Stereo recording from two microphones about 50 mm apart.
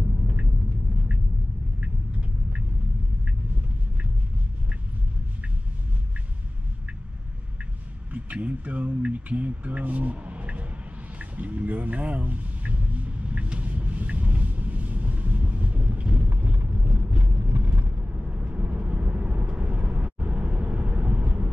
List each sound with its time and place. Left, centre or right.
1.8 s vehicle: right
8.1 s mantra: right
11.1 s speech: right
12.2 s vehicle: right